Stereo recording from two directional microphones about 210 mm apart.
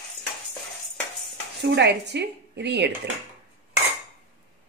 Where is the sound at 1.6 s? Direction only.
55° right (ahead or behind).